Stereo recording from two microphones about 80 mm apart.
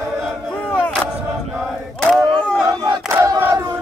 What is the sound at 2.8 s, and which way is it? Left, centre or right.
Crowd, right.